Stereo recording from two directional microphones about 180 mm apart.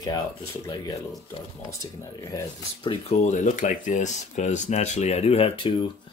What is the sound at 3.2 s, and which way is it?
Speech, 45° left (ahead or behind).